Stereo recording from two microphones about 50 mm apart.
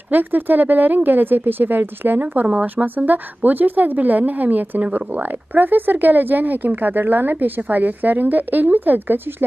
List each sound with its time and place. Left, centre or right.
0.1 s a woman's voice: right